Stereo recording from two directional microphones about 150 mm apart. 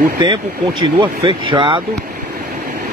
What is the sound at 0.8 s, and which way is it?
Speech, 35° right (ahead or behind).